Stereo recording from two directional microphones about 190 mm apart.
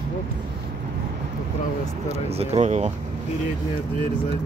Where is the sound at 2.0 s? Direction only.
35° right (ahead or behind).